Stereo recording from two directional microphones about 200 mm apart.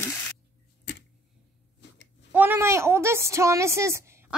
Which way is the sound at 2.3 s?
10° right (ahead or behind).